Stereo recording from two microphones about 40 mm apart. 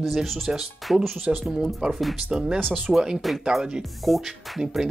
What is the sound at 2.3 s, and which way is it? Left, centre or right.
Speech, centre.